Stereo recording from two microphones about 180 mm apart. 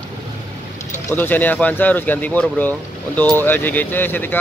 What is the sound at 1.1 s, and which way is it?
Speech, 10° left (ahead or behind).